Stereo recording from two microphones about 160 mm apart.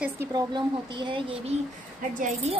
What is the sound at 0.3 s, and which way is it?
Speech, 30° right (ahead or behind).